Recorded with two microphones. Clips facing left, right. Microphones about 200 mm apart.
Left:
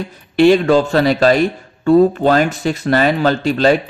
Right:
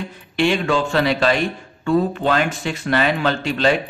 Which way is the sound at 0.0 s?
40° left (ahead or behind).